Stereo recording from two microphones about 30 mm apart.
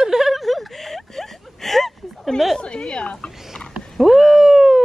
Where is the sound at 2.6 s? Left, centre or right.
Left.